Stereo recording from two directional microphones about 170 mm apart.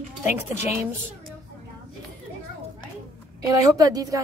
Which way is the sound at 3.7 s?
20° right (ahead or behind).